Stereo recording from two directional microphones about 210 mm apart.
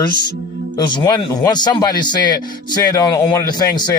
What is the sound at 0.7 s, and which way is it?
Speech, 20° left (ahead or behind).